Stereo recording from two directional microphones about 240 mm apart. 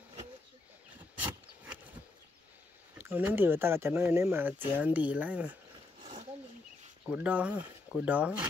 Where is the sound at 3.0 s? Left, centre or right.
Centre.